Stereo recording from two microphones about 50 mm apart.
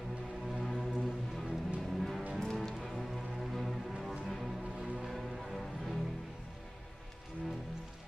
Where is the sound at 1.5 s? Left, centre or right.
Centre.